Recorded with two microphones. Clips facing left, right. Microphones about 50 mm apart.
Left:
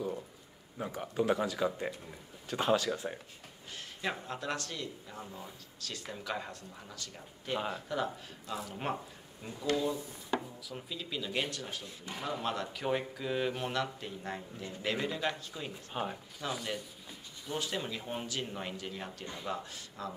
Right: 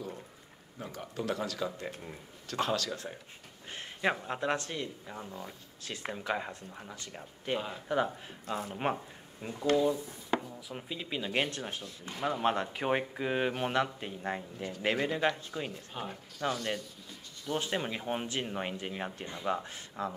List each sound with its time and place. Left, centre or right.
0.7 s speech: centre
3.7 s speech: right
8.5 s speech: right
10.7 s speech: right
15.9 s speech: centre
17.5 s speech: right